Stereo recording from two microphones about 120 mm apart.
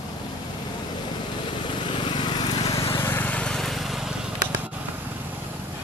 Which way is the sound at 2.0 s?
40° left (ahead or behind).